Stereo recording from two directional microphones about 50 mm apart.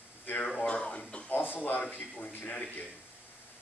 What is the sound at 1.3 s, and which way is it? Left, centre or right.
Speech, left.